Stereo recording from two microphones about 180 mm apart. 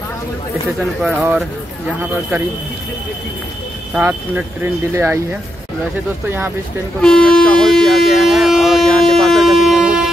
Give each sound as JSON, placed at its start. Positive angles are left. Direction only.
{"t": 0.7, "sound": "speech", "side_deg": -5}
{"t": 3.9, "sound": "speech", "side_deg": -5}
{"t": 7.0, "sound": "speech", "side_deg": 5}